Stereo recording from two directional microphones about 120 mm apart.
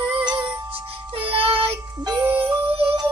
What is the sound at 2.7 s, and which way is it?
Music, 50° right (ahead or behind).